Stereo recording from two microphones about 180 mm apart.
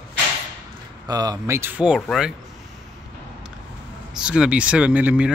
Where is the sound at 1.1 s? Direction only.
20° right (ahead or behind); by 2.3 s centre (ahead or behind).